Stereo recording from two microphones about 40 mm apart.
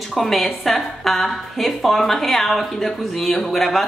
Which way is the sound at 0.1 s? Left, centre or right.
Centre.